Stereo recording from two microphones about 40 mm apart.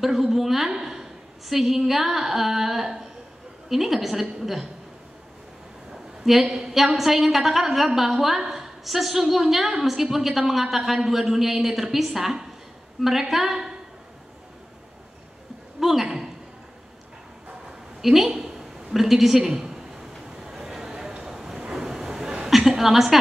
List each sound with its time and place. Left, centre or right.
0.0 s a woman's voice: centre
6.4 s a woman's voice: centre
15.8 s a sound: centre
18.0 s a woman's voice: centre
19.7 s a sound: centre
21.7 s vehicle: centre
22.7 s a woman's voice: centre